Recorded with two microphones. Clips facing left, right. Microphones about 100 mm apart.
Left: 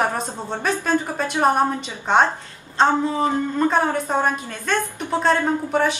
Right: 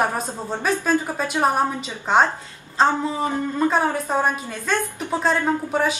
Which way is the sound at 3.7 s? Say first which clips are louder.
Left 1 dB; 5° right (ahead or behind).